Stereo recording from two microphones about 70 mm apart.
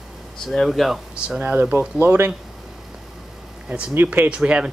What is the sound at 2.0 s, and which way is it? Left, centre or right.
Speech, right.